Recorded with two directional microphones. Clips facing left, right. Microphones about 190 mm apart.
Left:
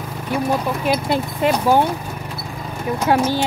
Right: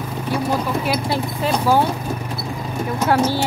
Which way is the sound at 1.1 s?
20° left (ahead or behind).